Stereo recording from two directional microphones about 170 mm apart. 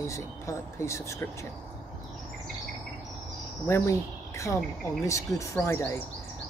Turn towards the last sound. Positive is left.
turn(degrees=15)  # may be behind; listen again after turning